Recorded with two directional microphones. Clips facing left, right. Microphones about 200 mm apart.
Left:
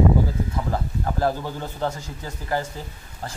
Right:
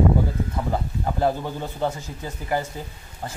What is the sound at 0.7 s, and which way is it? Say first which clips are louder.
A man's voice: right 1 dB; 15° right (ahead or behind).